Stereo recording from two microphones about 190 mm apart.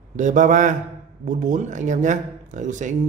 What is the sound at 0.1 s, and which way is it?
Speech, 40° right (ahead or behind).